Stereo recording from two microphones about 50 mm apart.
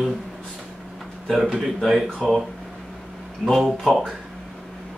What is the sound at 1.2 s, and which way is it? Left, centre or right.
Speech, centre.